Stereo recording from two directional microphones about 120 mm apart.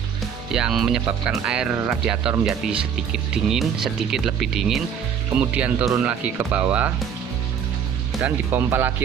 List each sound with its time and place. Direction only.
0.5 s speech: 5° right (ahead or behind)
8.2 s speech: 15° right (ahead or behind)